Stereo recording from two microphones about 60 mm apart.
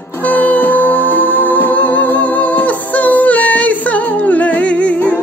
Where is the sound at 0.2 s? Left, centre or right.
Left.